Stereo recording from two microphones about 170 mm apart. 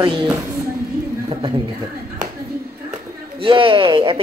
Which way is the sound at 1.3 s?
30° right (ahead or behind).